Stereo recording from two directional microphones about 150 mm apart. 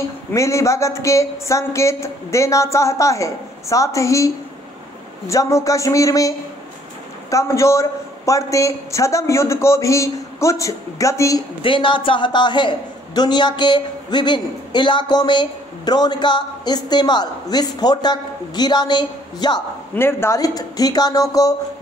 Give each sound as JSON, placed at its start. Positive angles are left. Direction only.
{"t": 0.3, "sound": "a man's voice", "side_deg": 20}
{"t": 5.3, "sound": "a man's voice", "side_deg": 20}
{"t": 11.6, "sound": "a man's voice", "side_deg": 35}
{"t": 20.0, "sound": "a man's voice", "side_deg": 15}